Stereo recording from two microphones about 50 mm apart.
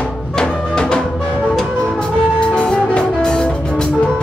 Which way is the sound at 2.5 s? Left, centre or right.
Centre.